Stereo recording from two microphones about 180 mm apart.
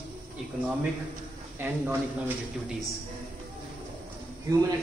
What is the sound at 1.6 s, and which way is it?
Speech, 10° right (ahead or behind).